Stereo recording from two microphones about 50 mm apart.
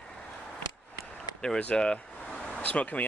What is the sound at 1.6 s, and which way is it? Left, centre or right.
Speech, left.